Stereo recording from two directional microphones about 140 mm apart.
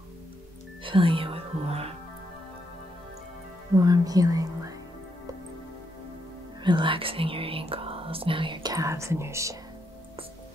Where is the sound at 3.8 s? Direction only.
25° right (ahead or behind).